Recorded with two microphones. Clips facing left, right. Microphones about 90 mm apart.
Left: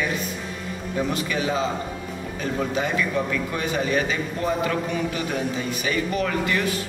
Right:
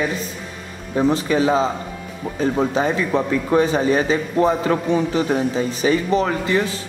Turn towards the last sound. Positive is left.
turn(degrees=-25)  # may be behind; listen again after turning